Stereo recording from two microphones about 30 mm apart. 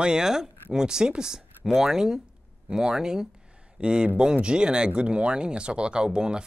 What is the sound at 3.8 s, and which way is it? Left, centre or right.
Speech, right.